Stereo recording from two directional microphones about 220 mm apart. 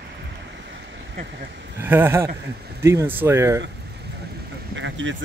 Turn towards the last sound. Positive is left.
turn(degrees=-55)  # may be behind; listen again after turning